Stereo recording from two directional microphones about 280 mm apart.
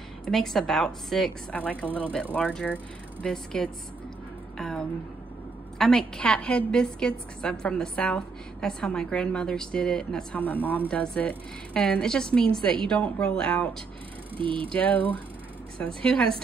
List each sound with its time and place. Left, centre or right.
0.2 s a woman's voice: centre
2.0 s speech: centre
2.3 s a woman's voice: centre
14.4 s speech: centre
14.7 s a woman's voice: centre